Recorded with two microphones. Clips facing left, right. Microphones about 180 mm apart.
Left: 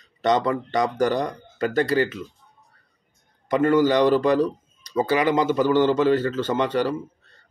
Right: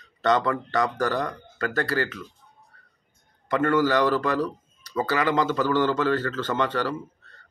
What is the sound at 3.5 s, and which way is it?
Speech, 15° left (ahead or behind).